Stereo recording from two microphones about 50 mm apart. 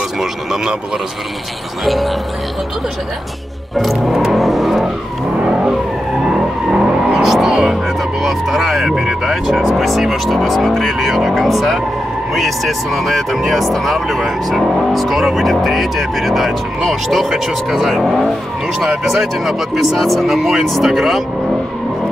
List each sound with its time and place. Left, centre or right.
0.2 s speech: centre
3.7 s music: centre
5.4 s vehicle: right
8.2 s speech: centre